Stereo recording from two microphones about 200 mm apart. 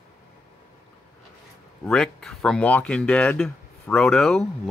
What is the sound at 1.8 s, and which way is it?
Speech, 5° left (ahead or behind).